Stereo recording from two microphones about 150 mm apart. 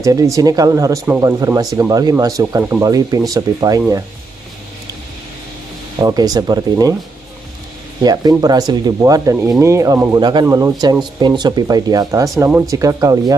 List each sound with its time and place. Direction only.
0.0 s speech: 25° right (ahead or behind)
5.9 s speech: 25° right (ahead or behind)
8.0 s speech: 25° right (ahead or behind)